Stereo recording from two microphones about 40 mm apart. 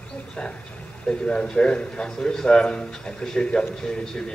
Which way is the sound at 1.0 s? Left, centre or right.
Left.